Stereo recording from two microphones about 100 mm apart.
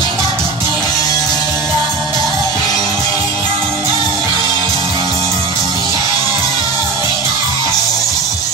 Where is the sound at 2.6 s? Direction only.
40° left (ahead or behind).